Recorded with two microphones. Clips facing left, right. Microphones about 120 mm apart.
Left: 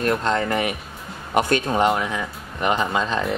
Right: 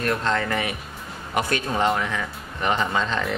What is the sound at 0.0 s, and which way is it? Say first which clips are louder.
Speech: left 3 dB; 25° left (ahead or behind).